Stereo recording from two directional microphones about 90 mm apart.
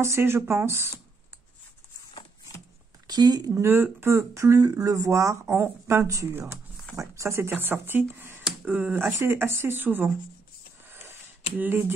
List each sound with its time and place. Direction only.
0.0 s speech: 30° right (ahead or behind)
3.1 s speech: 50° right (ahead or behind)
3.6 s speech: 25° right (ahead or behind)
10.9 s a sound: 25° right (ahead or behind)